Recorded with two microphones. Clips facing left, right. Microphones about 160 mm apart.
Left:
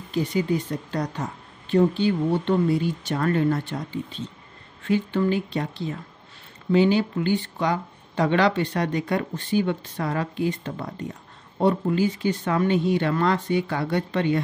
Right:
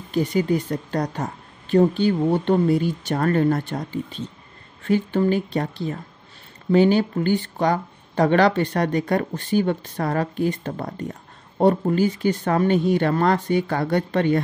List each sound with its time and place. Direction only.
0.1 s speech: 45° right (ahead or behind)